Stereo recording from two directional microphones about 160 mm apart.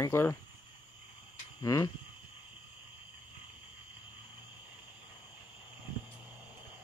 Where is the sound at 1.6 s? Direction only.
20° left (ahead or behind).